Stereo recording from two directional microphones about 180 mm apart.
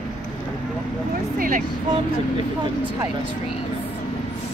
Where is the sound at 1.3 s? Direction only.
50° right (ahead or behind).